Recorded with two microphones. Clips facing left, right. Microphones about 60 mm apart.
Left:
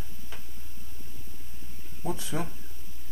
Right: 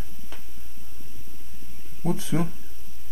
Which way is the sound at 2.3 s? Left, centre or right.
Right.